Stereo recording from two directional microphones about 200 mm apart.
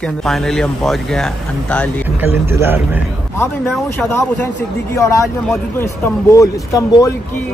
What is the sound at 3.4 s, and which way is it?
Speech, 10° left (ahead or behind).